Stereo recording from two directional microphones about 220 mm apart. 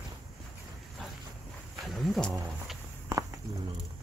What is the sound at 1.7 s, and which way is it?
Speech, centre (ahead or behind).